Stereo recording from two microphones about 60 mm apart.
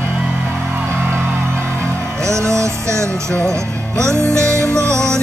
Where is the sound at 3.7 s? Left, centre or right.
Centre.